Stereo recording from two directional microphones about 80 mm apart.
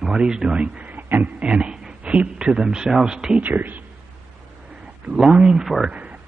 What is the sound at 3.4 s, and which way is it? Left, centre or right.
Speech, right.